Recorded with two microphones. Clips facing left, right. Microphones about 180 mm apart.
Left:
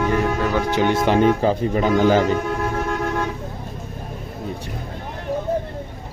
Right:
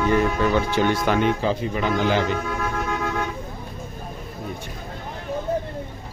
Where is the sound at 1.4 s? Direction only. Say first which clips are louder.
Left 5 dB; 45° left (ahead or behind).